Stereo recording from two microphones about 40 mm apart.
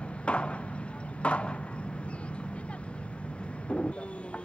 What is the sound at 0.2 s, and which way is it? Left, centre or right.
Chop, left.